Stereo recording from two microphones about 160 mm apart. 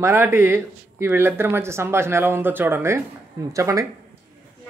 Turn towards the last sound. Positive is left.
turn(degrees=-20)  # may be behind; listen again after turning